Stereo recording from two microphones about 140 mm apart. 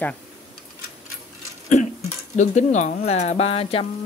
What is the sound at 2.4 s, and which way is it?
Speech, 55° left (ahead or behind).